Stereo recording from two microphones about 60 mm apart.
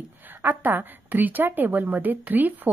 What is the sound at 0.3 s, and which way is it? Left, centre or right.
A woman's voice, right.